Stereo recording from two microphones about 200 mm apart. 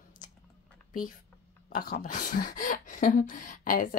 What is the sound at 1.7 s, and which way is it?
Speech, 45° left (ahead or behind).